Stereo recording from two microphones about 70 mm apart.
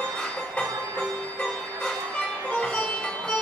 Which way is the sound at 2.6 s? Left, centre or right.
Centre.